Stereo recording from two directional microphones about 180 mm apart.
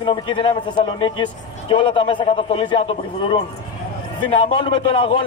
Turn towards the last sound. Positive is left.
turn(degrees=30)  # may be behind; listen again after turning